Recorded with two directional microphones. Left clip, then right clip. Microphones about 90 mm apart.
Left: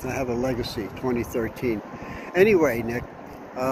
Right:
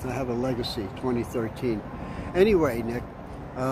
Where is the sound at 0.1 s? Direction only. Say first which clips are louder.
Left 3 dB; 15° right (ahead or behind).